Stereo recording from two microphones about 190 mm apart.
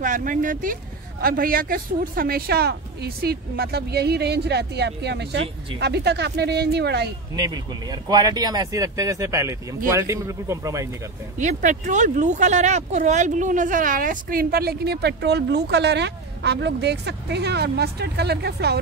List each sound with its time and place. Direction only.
0.0 s speech: 45° right (ahead or behind)
7.3 s a man's voice: 20° right (ahead or behind)
11.3 s speech: 40° right (ahead or behind); by 18.8 s 60° right (ahead or behind)